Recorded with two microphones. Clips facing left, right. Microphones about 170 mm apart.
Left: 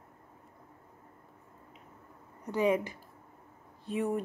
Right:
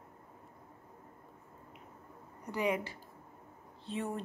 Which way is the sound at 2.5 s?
15° right (ahead or behind).